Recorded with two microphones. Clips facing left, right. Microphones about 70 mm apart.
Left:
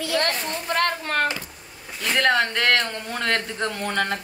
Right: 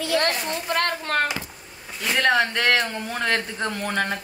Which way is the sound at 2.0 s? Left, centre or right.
Centre.